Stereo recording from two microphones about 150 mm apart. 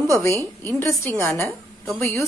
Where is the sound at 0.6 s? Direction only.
15° left (ahead or behind).